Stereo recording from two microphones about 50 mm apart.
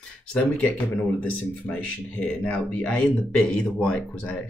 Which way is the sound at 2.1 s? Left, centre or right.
Left.